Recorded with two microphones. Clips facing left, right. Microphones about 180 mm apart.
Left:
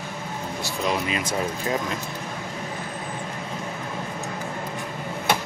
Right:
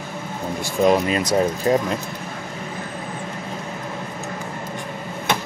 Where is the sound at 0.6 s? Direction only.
50° right (ahead or behind).